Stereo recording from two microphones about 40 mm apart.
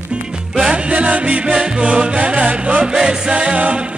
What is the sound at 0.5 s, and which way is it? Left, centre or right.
Music, right.